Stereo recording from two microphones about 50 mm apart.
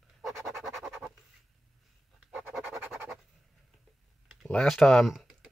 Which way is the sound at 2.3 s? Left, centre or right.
Centre.